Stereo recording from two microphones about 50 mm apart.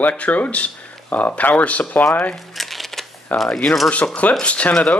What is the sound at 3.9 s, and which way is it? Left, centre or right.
Speech, left.